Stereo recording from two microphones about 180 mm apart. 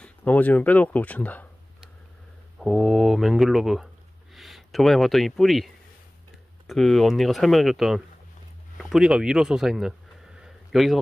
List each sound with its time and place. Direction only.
0.0 s speech: 10° left (ahead or behind)
2.6 s speech: centre (ahead or behind)
6.7 s speech: centre (ahead or behind)
8.7 s a sound: centre (ahead or behind)